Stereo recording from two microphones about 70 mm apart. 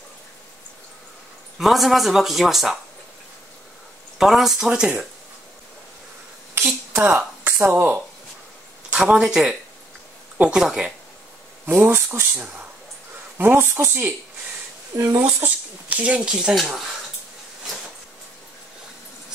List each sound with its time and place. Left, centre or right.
1.6 s speech: centre
4.2 s speech: centre
6.6 s speech: right
8.9 s speech: centre
11.9 s speech: right
15.2 s speech: right; by 16.9 s centre